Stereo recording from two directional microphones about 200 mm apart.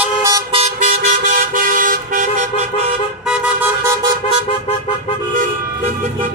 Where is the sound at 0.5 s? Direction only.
40° right (ahead or behind).